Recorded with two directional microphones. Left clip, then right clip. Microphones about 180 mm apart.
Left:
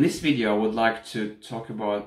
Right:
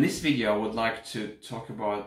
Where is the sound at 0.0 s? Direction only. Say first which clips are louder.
Left 3 dB; 5° left (ahead or behind).